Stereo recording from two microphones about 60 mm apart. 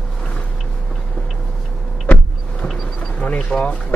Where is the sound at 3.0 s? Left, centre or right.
Left.